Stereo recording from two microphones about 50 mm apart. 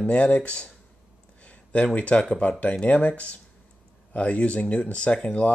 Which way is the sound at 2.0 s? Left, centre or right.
Left.